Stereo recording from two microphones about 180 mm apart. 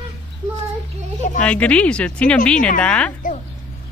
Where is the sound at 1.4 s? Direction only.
5° left (ahead or behind).